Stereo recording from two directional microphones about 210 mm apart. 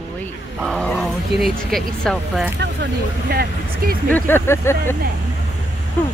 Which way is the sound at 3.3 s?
45° right (ahead or behind).